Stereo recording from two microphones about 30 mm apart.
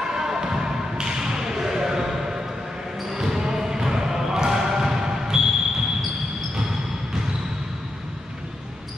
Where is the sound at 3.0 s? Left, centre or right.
Centre.